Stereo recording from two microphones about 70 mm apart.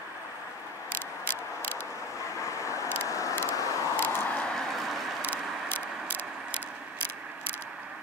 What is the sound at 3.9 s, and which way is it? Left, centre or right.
Vehicle, left.